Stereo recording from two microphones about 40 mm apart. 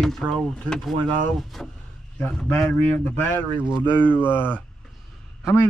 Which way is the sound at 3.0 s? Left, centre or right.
Left.